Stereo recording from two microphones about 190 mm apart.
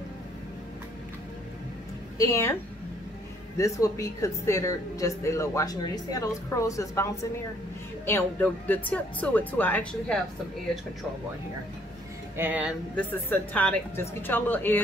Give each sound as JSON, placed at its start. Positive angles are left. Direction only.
{"t": 2.1, "sound": "a woman's voice", "side_deg": 15}
{"t": 3.5, "sound": "a woman's voice", "side_deg": 15}
{"t": 12.4, "sound": "speech", "side_deg": -10}
{"t": 12.9, "sound": "a woman's voice", "side_deg": 10}